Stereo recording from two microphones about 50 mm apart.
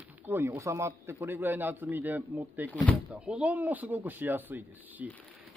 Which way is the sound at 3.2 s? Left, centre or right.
Right.